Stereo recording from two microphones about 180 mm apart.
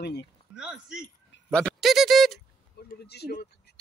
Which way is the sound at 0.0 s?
70° left (ahead or behind).